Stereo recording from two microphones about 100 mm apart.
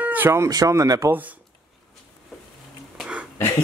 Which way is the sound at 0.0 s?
20° right (ahead or behind).